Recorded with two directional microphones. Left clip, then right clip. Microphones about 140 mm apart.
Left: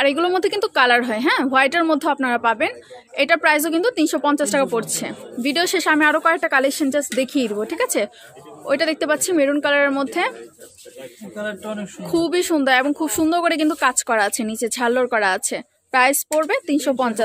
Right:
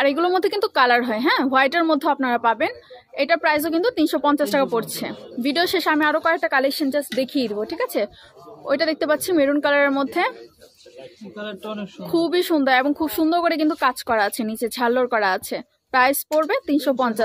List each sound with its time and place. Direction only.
0.0 s a woman's voice: 10° left (ahead or behind)
3.2 s a woman's voice: 25° left (ahead or behind)
8.6 s a woman's voice: 15° left (ahead or behind)
11.3 s a man's voice: 80° left
12.0 s a woman's voice: 15° left (ahead or behind)